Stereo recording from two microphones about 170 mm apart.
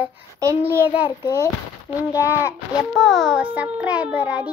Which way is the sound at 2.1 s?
15° left (ahead or behind).